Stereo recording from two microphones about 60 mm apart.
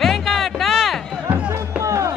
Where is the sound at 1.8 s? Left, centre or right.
Right.